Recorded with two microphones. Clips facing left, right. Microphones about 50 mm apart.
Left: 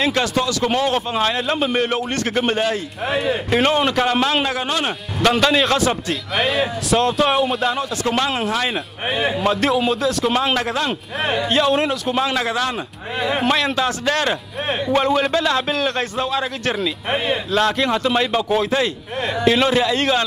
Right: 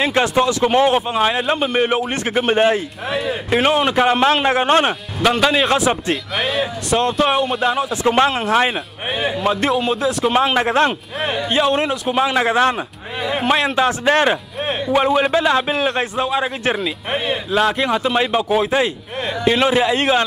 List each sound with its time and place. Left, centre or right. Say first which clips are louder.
0.0 s a man's voice: right 3 dB; right
2.5 s a man's voice: right 5 dB; right
3.4 s speech: right 3 dB; centre
4.5 s speech: right 7 dB; right
5.2 s speech: even; centre
6.3 s speech: left 5 dB; centre
8.5 s a man's voice: right 5 dB; right
9.4 s speech: right 1 dB; centre
11.3 s speech: even; centre
12.4 s a man's voice: right 5 dB; right